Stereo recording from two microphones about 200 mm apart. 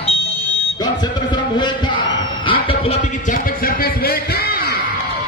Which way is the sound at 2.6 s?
30° left (ahead or behind).